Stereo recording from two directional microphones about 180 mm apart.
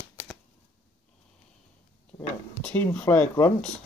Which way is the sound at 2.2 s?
10° left (ahead or behind).